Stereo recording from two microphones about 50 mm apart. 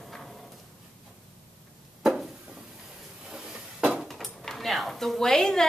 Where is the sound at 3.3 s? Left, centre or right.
Centre.